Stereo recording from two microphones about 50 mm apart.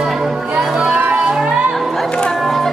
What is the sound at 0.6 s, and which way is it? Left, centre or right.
Music, centre.